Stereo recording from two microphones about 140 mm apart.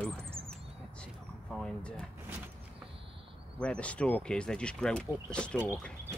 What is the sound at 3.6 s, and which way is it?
Speech, 10° left (ahead or behind).